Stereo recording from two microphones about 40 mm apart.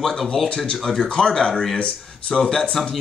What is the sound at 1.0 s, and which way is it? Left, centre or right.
Speech, left.